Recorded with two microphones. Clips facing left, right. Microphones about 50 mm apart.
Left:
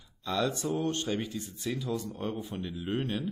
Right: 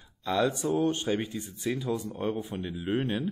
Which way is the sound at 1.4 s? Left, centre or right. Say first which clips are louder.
Right 3 dB; centre.